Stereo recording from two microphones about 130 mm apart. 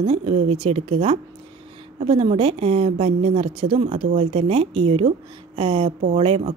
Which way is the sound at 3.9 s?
65° right (ahead or behind).